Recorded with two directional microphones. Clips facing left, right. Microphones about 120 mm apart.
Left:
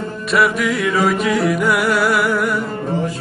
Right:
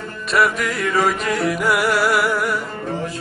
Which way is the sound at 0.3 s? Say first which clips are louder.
Left 2 dB; centre (ahead or behind).